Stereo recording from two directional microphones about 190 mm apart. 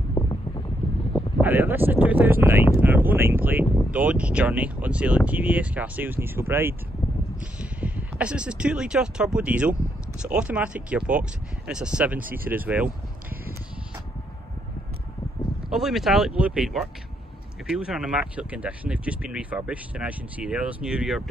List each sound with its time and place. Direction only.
0.1 s wind: 20° left (ahead or behind)
1.4 s speech: 10° right (ahead or behind)
7.8 s speech: 5° right (ahead or behind)
15.7 s speech: centre (ahead or behind)